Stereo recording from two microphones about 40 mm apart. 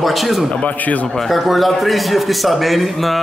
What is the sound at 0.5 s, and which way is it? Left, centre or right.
Speech, left.